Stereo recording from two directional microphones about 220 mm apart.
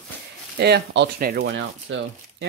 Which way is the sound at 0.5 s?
50° right (ahead or behind).